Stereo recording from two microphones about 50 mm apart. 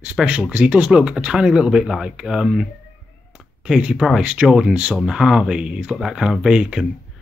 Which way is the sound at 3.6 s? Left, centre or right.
Centre.